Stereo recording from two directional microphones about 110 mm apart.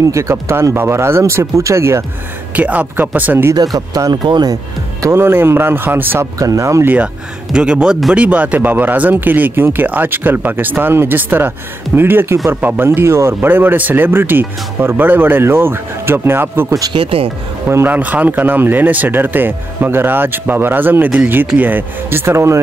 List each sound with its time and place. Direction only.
0.0 s speech: 25° right (ahead or behind)
2.5 s speech: 15° right (ahead or behind)
3.5 s speech: 35° right (ahead or behind)
5.0 s speech: 20° right (ahead or behind)
6.3 s speech: 30° right (ahead or behind)
7.5 s speech: 5° right (ahead or behind)
16.9 s speech: 55° right (ahead or behind)
17.6 s speech: 20° right (ahead or behind)